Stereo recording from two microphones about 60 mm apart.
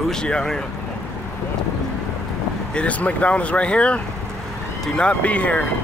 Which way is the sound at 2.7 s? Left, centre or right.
Left.